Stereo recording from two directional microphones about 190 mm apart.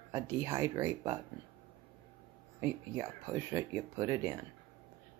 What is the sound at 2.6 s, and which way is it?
Speech, 15° right (ahead or behind).